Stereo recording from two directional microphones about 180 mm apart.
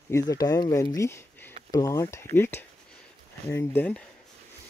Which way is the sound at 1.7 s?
20° left (ahead or behind).